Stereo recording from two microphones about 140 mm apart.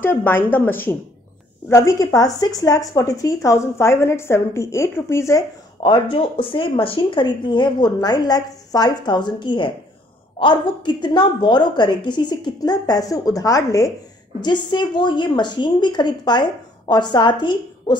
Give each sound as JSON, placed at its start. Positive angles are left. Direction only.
{"t": 0.0, "sound": "a woman's voice", "side_deg": 15}
{"t": 5.8, "sound": "speech", "side_deg": 35}